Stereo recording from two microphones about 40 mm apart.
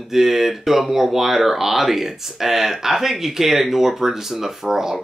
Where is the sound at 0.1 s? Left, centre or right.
Centre.